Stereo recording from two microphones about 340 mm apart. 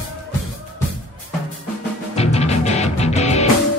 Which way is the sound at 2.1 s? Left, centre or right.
Centre.